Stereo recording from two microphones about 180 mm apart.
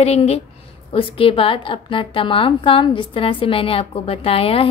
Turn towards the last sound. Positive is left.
turn(degrees=30)  # may be behind; listen again after turning